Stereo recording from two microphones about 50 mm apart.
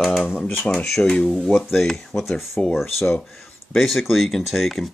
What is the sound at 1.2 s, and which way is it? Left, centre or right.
Speech, centre.